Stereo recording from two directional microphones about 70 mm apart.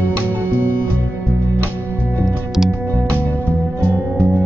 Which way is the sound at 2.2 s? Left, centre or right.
Centre.